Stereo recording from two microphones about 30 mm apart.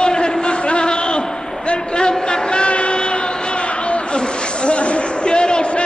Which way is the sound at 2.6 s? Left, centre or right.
Left.